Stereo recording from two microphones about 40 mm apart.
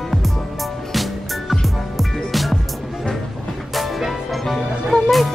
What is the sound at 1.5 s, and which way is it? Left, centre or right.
Music, centre.